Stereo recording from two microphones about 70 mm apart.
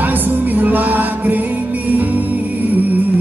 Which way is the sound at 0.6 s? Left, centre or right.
Right.